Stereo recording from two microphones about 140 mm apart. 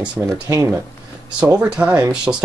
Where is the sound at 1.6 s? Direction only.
10° right (ahead or behind).